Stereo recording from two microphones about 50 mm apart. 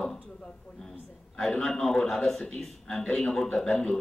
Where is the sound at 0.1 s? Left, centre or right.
Centre.